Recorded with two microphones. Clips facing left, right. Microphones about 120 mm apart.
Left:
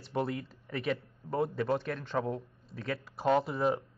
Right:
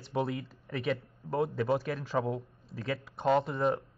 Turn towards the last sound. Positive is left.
turn(degrees=0)  # may be behind; listen again after turning